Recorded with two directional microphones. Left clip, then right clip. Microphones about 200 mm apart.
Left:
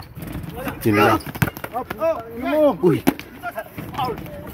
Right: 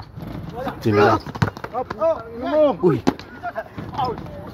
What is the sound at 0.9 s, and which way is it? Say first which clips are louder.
Basketball bounce: even; 5° left (ahead or behind).